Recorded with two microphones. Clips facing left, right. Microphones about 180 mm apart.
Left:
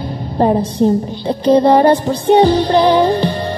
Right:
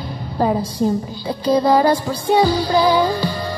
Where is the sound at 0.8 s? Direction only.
30° left (ahead or behind).